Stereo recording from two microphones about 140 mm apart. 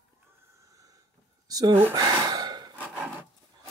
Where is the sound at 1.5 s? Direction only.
30° right (ahead or behind).